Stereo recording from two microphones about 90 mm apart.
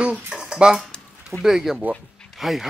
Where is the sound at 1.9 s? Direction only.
Centre (ahead or behind).